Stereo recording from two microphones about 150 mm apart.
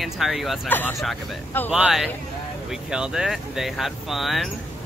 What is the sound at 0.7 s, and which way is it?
Speech, 15° left (ahead or behind).